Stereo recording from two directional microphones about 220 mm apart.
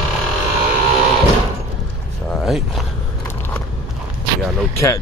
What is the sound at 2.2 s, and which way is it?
Zipper, centre (ahead or behind).